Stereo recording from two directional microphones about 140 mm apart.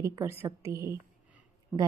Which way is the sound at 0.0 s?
20° right (ahead or behind).